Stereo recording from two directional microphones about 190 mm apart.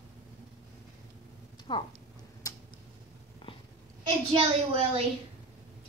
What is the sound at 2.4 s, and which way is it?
Tick-tock, 20° left (ahead or behind).